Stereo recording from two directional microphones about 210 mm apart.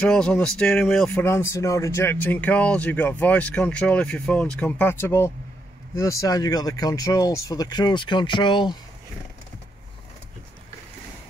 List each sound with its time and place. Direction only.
0.0 s speech: 5° left (ahead or behind); by 8.7 s 20° left (ahead or behind)